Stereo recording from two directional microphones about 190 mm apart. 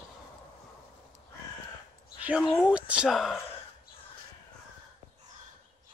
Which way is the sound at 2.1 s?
10° right (ahead or behind).